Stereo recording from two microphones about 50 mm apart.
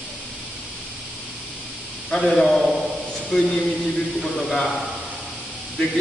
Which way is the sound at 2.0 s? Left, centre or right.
Centre.